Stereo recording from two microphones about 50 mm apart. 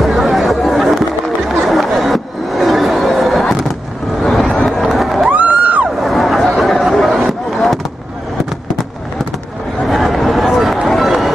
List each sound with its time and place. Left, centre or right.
0.0 s chatter: centre
4.2 s vehicle: centre
4.6 s crowd: centre
5.3 s music: right
6.0 s a sound: centre
9.8 s a sound: centre
11.1 s run: centre